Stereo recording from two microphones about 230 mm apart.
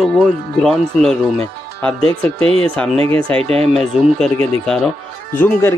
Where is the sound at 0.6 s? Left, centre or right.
Centre.